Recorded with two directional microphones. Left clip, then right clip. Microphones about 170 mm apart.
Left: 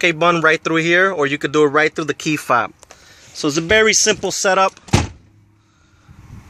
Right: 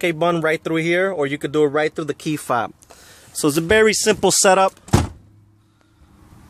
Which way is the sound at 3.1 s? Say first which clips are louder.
Right 1 dB; 30° right (ahead or behind).